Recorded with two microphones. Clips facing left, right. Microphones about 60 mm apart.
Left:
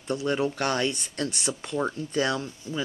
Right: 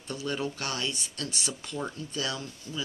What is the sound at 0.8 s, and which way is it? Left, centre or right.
Speech, left.